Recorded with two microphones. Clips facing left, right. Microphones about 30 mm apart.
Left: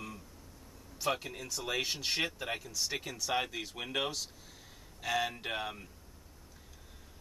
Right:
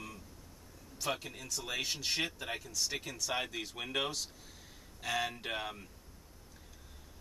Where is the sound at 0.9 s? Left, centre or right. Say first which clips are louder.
Left 3 dB; centre.